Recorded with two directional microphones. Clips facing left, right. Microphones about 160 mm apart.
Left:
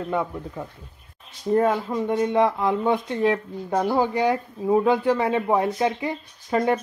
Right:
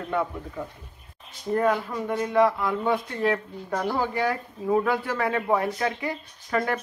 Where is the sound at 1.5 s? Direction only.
25° left (ahead or behind).